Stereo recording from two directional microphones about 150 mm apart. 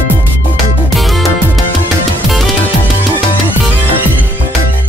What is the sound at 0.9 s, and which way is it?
Music, centre (ahead or behind).